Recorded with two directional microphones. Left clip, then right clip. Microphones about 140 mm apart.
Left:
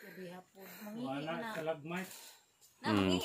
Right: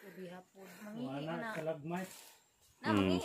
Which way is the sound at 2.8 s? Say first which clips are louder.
Even; 30° left (ahead or behind).